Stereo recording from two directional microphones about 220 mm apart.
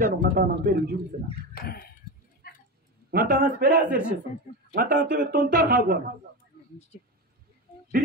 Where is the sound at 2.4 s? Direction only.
45° left (ahead or behind).